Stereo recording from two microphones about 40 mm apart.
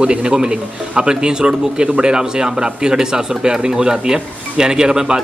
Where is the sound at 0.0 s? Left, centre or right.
Right.